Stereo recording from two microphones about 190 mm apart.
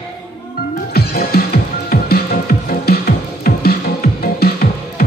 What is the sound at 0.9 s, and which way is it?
Music, 55° left (ahead or behind).